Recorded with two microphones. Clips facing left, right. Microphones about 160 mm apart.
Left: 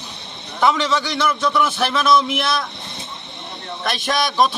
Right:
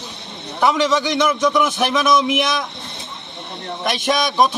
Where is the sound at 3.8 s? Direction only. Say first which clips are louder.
Right 2 dB; 15° right (ahead or behind).